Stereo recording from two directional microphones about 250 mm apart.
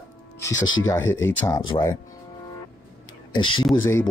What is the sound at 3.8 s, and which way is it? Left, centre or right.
Speech, centre.